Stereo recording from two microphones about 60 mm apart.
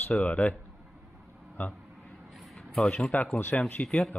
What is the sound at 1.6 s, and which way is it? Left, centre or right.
Speech, left.